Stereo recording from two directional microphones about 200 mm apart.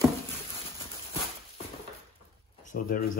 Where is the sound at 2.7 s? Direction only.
45° left (ahead or behind).